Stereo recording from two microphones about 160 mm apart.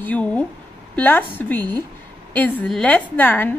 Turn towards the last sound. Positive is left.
turn(degrees=10)  # may be behind; listen again after turning